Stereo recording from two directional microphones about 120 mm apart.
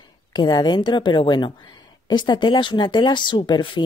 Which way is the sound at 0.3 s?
35° left (ahead or behind).